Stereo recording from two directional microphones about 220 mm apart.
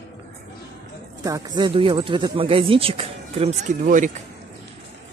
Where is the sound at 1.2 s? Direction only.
15° right (ahead or behind); by 4.1 s 35° right (ahead or behind).